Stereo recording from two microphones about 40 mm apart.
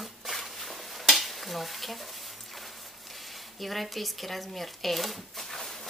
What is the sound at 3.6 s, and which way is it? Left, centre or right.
Speech, centre.